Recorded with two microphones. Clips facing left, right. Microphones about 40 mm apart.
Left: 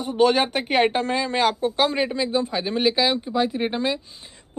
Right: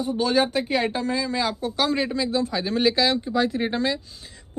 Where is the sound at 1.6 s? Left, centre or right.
Left; by 4.0 s centre.